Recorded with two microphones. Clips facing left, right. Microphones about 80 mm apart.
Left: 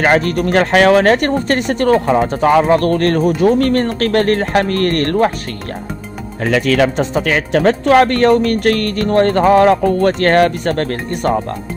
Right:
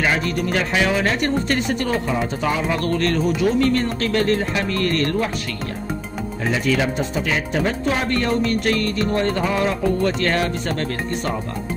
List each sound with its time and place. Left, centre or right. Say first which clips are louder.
0.0 s speech: left 8 dB; left
6.4 s speech: left 7 dB; left